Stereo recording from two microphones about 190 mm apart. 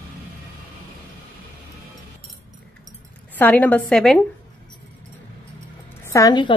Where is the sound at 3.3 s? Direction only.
10° left (ahead or behind).